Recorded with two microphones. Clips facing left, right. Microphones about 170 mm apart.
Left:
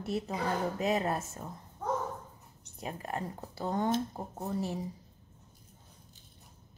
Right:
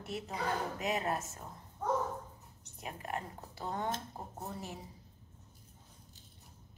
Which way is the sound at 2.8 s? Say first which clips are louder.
Left 4 dB; 35° left (ahead or behind).